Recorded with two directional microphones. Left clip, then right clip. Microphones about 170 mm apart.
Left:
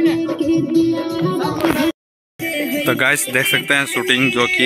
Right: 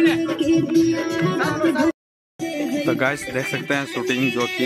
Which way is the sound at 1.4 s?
50° left (ahead or behind).